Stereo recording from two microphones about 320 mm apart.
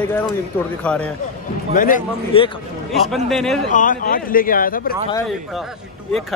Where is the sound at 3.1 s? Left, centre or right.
Centre.